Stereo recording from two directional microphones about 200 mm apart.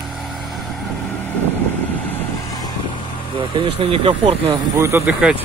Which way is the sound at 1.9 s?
10° left (ahead or behind).